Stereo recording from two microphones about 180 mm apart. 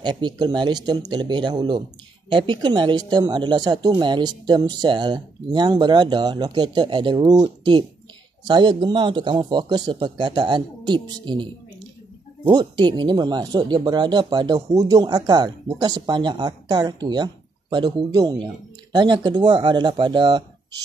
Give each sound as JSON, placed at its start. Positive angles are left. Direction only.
{"t": 0.0, "sound": "speech", "side_deg": -25}
{"t": 12.4, "sound": "speech", "side_deg": -25}